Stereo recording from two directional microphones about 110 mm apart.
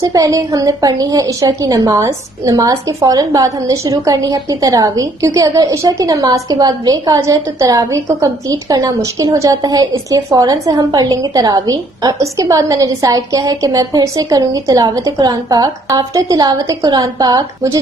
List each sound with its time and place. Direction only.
0.0 s a woman's voice: 30° right (ahead or behind)